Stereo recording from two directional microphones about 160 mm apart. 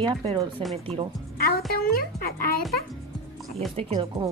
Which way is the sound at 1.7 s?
70° left (ahead or behind).